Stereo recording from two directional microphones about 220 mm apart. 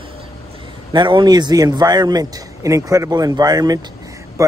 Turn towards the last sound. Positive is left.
turn(degrees=-15)  # may be behind; listen again after turning